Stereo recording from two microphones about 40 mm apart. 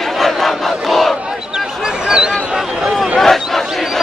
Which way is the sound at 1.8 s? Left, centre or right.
Centre.